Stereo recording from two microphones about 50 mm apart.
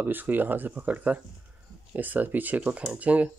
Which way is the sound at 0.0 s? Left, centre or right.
Right.